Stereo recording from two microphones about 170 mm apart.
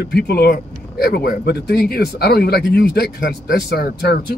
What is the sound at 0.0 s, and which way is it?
Speech, 70° left (ahead or behind).